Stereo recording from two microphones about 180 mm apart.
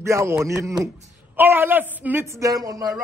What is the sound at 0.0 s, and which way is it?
A man's voice, 15° right (ahead or behind).